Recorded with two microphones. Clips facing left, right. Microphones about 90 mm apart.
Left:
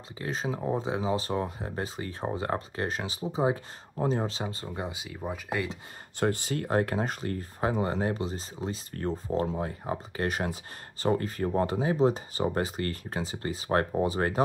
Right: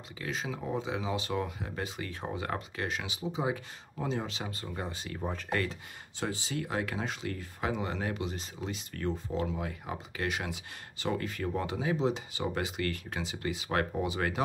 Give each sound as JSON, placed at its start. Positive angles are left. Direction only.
{"t": 0.2, "sound": "speech", "side_deg": 35}
{"t": 4.7, "sound": "speech", "side_deg": 10}
{"t": 6.1, "sound": "speech", "side_deg": 55}